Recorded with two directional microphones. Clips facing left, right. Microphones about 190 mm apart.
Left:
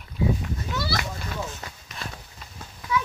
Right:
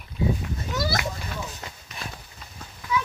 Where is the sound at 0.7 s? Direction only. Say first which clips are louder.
Right 3 dB; 50° right (ahead or behind).